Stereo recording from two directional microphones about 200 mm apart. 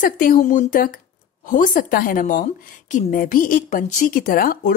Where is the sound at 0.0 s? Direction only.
40° left (ahead or behind).